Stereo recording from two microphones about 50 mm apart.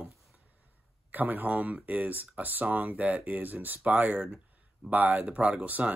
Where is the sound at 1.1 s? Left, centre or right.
Right.